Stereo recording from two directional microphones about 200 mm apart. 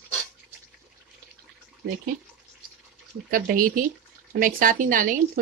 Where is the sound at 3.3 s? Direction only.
45° right (ahead or behind).